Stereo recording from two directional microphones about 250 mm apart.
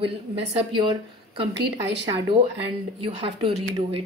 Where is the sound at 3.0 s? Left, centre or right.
Right.